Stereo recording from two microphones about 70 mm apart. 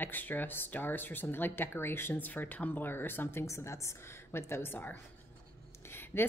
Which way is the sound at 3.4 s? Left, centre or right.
Left.